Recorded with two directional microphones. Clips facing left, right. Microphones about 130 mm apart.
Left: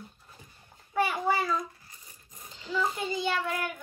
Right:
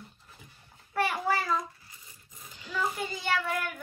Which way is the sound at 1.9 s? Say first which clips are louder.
Left 1 dB; 45° left (ahead or behind).